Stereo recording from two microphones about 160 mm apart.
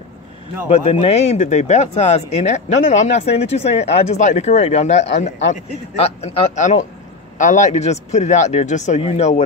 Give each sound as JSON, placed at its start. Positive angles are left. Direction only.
{"t": 0.7, "sound": "speech", "side_deg": 40}